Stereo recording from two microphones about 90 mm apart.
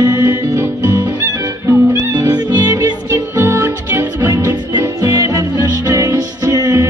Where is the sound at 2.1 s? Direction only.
50° right (ahead or behind).